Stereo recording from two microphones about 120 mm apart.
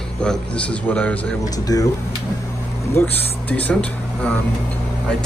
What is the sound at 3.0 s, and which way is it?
Speech, 20° left (ahead or behind).